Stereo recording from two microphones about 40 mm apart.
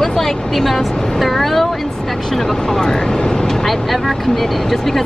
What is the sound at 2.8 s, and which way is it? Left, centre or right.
Speech, centre.